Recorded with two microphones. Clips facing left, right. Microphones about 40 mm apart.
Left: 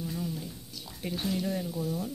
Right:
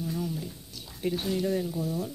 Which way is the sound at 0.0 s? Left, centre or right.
Centre.